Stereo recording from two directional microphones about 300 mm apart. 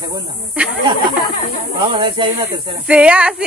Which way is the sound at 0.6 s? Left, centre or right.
Centre.